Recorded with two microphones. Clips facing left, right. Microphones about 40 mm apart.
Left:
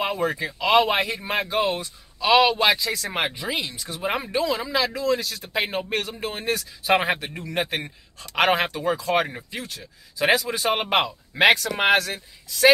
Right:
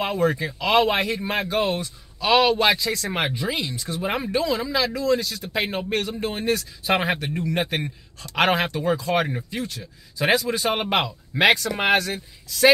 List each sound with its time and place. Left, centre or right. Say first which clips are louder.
0.0 s a man's voice: right 2 dB; centre